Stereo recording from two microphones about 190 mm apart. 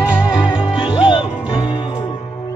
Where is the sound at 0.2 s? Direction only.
25° left (ahead or behind).